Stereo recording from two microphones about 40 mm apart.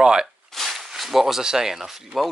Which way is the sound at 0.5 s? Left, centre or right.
Centre.